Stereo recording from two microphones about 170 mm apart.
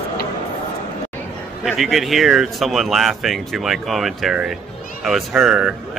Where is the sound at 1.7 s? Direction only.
Centre (ahead or behind).